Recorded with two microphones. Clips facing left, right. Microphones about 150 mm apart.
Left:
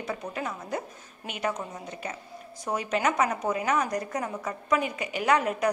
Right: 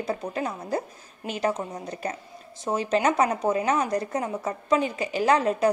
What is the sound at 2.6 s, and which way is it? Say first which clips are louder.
A woman's voice: right 4 dB; 30° right (ahead or behind).